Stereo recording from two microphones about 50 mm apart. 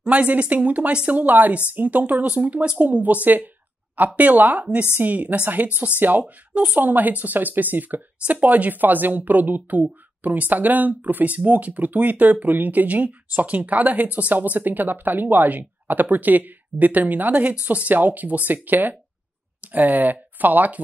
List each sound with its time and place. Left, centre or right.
0.0 s a woman's voice: right